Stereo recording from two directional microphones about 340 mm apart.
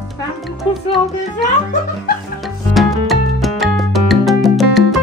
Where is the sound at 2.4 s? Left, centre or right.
Centre.